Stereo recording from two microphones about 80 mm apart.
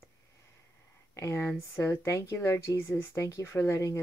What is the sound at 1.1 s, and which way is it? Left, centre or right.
A woman's voice, left.